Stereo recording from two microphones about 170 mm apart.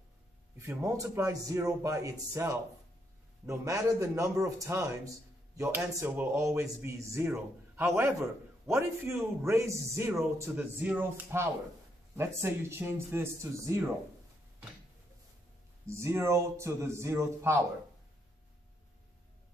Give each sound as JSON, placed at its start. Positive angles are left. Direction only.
{"t": 0.6, "sound": "a man's voice", "side_deg": -15}
{"t": 15.9, "sound": "a man's voice", "side_deg": -15}